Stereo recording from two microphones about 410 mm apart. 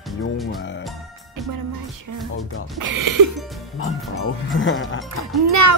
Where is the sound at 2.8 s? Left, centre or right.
Right.